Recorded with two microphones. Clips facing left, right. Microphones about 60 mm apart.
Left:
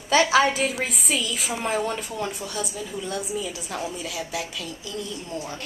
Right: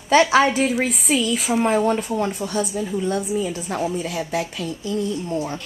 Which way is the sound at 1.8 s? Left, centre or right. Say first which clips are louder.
Right 7 dB; right.